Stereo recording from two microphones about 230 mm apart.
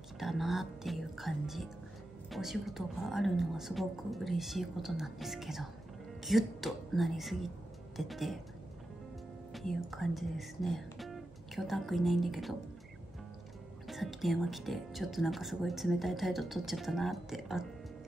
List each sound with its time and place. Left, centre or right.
0.2 s speech: centre
9.5 s speech: centre
13.8 s speech: centre